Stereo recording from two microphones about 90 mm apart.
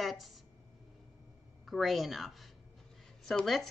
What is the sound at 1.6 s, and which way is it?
Speech, centre (ahead or behind).